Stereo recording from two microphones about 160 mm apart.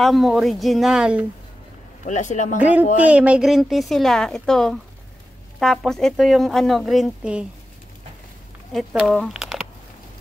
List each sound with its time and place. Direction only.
0.0 s speech: centre (ahead or behind)
2.0 s speech: 50° left (ahead or behind)
2.6 s speech: 10° right (ahead or behind)
8.7 s speech: centre (ahead or behind)